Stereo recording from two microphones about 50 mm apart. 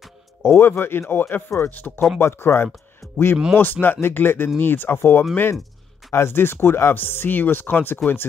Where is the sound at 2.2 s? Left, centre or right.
Left.